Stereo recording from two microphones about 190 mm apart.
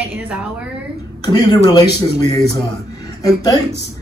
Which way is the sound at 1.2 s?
20° left (ahead or behind).